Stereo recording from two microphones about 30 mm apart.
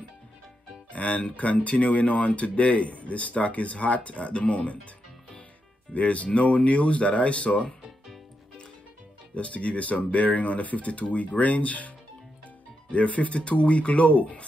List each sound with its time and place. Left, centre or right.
0.9 s speech: left
5.9 s speech: left
9.3 s speech: left
12.9 s speech: left